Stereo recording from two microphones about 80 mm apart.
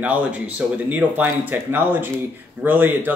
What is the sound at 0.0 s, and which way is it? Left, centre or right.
Speech, centre.